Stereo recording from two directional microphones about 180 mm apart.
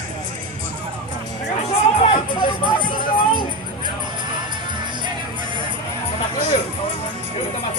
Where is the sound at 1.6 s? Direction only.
30° left (ahead or behind).